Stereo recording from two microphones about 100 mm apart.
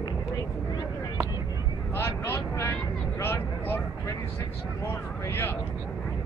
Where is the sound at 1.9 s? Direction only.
25° left (ahead or behind).